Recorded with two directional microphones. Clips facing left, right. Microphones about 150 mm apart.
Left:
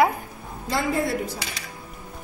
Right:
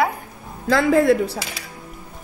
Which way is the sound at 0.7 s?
90° right.